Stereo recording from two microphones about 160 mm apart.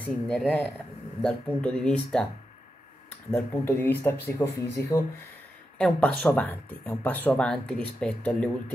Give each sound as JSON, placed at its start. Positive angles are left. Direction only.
{"t": 0.0, "sound": "speech", "side_deg": 0}
{"t": 3.3, "sound": "speech", "side_deg": 15}
{"t": 5.8, "sound": "speech", "side_deg": 5}